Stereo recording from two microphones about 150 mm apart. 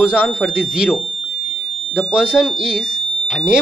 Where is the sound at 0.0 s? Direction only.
5° right (ahead or behind).